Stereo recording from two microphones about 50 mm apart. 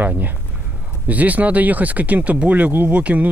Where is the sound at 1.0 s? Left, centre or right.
Right.